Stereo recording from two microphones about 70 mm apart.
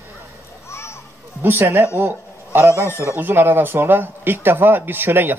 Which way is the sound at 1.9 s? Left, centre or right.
Right.